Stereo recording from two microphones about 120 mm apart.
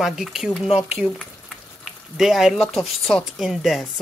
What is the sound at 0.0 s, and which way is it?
Speech, 5° right (ahead or behind).